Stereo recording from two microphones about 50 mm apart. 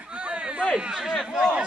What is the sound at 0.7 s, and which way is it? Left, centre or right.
Speech, centre.